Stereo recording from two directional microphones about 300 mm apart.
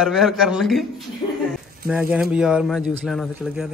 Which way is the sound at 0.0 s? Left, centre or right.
Centre.